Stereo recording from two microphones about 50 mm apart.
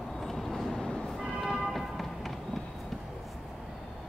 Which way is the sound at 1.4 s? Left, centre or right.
Centre.